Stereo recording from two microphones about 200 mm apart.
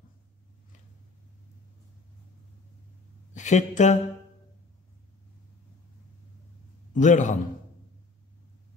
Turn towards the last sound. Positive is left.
turn(degrees=35)  # may be behind; listen again after turning